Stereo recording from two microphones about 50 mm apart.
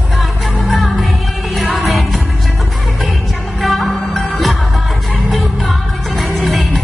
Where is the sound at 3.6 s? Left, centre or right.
Centre.